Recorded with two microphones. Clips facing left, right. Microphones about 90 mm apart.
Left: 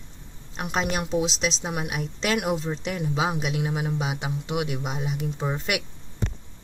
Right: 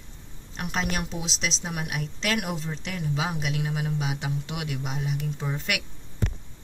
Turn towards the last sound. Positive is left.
turn(degrees=20)  # may be behind; listen again after turning